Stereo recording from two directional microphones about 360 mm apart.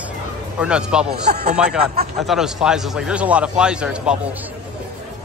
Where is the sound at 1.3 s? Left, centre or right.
Right.